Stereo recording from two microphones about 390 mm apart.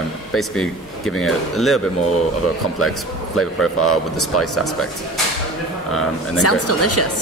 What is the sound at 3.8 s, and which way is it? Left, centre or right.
Speech, left.